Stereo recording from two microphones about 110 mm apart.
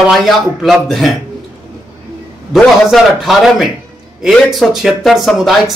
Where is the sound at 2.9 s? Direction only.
Centre (ahead or behind).